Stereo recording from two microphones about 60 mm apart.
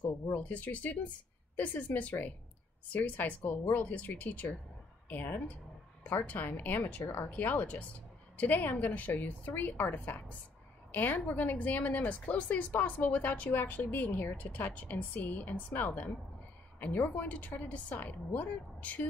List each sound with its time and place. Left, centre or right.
0.3 s a woman's voice: left